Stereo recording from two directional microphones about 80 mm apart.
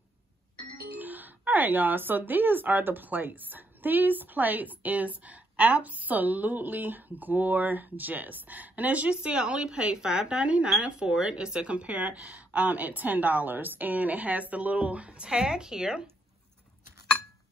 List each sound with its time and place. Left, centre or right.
0.9 s speech: right